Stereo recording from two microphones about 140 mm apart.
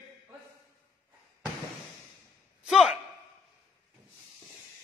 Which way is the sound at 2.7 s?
Centre (ahead or behind).